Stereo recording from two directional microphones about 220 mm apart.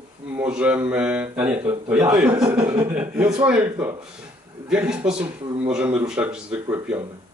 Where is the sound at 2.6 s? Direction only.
20° right (ahead or behind).